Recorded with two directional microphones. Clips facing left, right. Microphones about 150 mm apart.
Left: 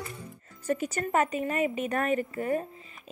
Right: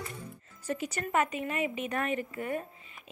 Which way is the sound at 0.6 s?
45° left (ahead or behind).